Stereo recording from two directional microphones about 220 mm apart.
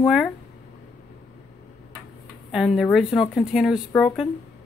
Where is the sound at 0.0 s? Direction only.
Centre (ahead or behind).